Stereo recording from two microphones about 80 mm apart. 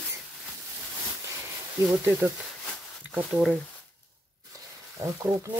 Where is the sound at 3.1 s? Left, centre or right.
Centre.